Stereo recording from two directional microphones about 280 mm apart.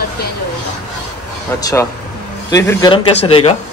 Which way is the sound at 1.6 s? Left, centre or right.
Centre.